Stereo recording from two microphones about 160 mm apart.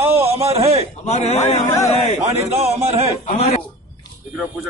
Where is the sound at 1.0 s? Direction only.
45° left (ahead or behind).